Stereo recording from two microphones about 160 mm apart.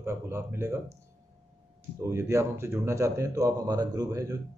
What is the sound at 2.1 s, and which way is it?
A man's voice, 15° right (ahead or behind).